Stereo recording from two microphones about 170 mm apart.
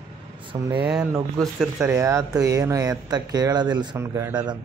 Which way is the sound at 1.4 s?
Centre (ahead or behind).